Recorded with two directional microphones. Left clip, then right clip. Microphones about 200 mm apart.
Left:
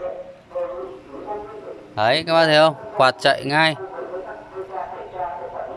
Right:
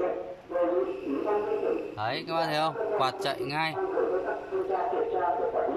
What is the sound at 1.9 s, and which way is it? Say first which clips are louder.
Speech: left 13 dB; 55° left (ahead or behind).